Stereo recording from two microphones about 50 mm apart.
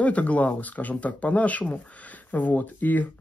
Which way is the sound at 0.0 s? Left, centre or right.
Left.